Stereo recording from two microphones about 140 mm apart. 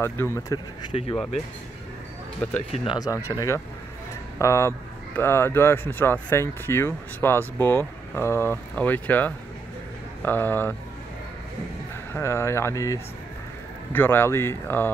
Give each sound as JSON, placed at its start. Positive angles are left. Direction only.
{"t": 0.0, "sound": "speech", "side_deg": 20}
{"t": 0.9, "sound": "speech", "side_deg": 40}
{"t": 2.7, "sound": "speech", "side_deg": 45}
{"t": 3.0, "sound": "speech", "side_deg": 20}
{"t": 12.1, "sound": "speech", "side_deg": 15}